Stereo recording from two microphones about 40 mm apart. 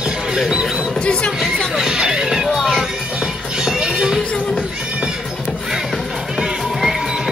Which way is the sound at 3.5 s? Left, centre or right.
Centre.